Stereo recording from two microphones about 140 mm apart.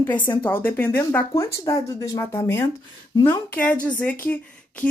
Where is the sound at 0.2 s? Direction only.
15° left (ahead or behind).